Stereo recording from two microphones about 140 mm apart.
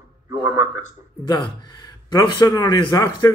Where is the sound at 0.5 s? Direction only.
20° right (ahead or behind).